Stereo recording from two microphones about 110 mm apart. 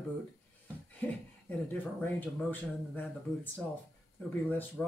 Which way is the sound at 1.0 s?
15° left (ahead or behind).